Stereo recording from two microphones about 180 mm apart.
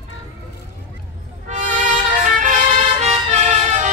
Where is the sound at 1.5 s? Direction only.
45° right (ahead or behind).